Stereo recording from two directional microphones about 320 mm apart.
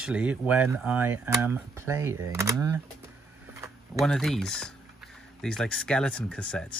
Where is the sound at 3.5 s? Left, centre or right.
Centre.